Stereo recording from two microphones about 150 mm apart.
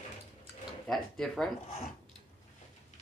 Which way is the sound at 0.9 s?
5° left (ahead or behind).